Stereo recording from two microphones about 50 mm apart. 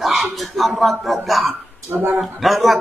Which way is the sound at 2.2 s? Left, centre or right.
Centre.